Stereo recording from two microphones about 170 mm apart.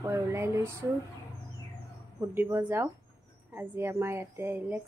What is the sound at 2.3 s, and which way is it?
A woman's voice, 15° right (ahead or behind).